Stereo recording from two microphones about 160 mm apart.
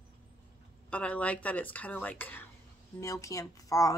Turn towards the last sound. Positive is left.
turn(degrees=20)  # may be behind; listen again after turning